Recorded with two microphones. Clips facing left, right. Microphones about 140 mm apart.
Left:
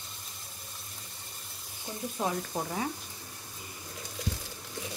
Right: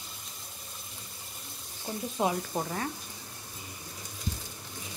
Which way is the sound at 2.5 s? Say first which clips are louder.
Right 1 dB; centre (ahead or behind).